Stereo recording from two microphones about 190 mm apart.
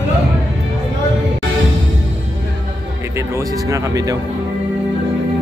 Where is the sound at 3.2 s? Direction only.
15° right (ahead or behind).